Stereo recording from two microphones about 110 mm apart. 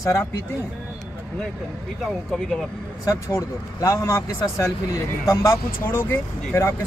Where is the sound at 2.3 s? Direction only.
5° left (ahead or behind).